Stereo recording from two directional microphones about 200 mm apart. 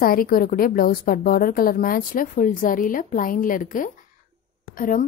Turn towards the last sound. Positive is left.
turn(degrees=45)  # may be behind; listen again after turning